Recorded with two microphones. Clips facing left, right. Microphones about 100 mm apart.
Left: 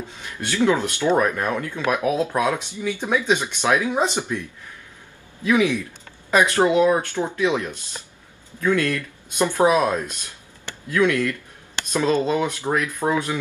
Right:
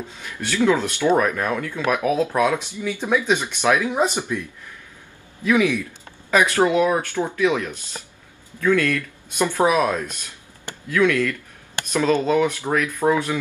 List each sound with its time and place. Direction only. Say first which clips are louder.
0.2 s speech: even; 20° left (ahead or behind)
5.5 s speech: even; 20° left (ahead or behind)